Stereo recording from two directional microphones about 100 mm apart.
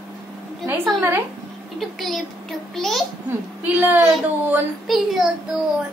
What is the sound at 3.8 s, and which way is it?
Speech, 20° right (ahead or behind).